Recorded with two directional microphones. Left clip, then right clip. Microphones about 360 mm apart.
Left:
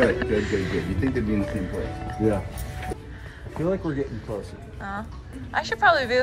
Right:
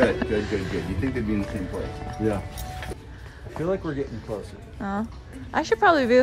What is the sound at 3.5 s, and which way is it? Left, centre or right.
Speech, centre.